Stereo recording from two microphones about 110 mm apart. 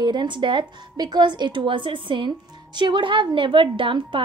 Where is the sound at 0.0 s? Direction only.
45° right (ahead or behind).